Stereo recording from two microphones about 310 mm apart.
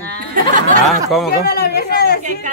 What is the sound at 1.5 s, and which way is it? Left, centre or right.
Speech, left.